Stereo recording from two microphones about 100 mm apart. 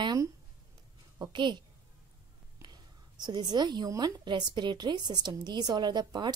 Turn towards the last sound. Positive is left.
turn(degrees=-45)  # may be behind; listen again after turning